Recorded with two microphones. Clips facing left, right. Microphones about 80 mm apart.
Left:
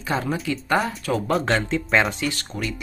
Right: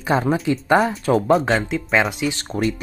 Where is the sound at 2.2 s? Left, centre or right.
Right.